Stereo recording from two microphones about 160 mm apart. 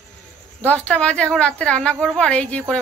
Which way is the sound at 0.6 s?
10° left (ahead or behind).